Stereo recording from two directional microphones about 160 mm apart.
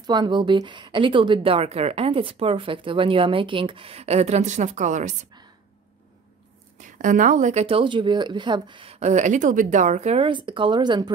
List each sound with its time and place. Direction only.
0.0 s speech: 25° right (ahead or behind); by 5.1 s 50° right (ahead or behind)
6.8 s speech: 50° right (ahead or behind); by 8.9 s 30° right (ahead or behind)
9.0 s speech: 45° right (ahead or behind); by 11.1 s 25° right (ahead or behind)